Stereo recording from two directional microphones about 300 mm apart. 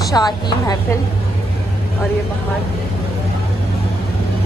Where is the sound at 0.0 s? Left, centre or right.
Centre.